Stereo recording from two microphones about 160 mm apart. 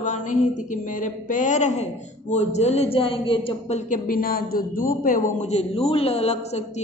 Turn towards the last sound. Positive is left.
turn(degrees=40)  # may be behind; listen again after turning